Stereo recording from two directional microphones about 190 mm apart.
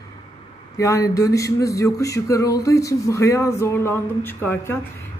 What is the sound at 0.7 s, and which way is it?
Speech, 15° left (ahead or behind).